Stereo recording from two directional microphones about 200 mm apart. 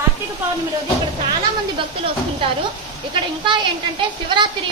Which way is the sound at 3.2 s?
20° right (ahead or behind).